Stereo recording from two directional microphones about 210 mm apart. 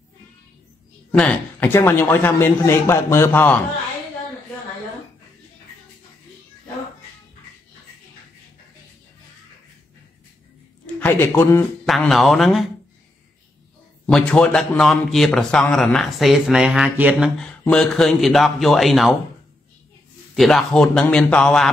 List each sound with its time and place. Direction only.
1.1 s a man's voice: 10° left (ahead or behind)
11.0 s a man's voice: 10° left (ahead or behind)
14.0 s a man's voice: 5° left (ahead or behind)
20.3 s a man's voice: centre (ahead or behind)